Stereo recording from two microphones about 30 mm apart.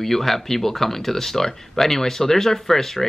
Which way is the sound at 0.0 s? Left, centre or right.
Centre.